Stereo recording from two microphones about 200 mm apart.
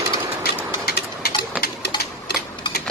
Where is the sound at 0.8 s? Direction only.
50° left (ahead or behind).